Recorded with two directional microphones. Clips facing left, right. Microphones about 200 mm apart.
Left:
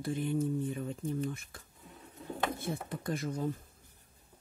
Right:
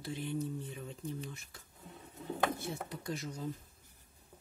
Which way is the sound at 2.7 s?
55° left (ahead or behind).